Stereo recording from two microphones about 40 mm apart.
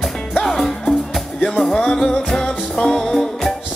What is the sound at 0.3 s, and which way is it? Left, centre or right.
Music, centre.